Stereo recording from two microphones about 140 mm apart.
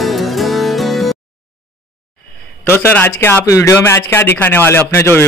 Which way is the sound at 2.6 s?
15° left (ahead or behind).